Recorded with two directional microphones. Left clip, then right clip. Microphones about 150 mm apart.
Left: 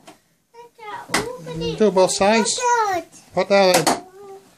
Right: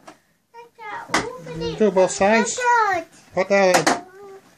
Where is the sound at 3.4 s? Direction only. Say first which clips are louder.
Left 2 dB; 25° left (ahead or behind).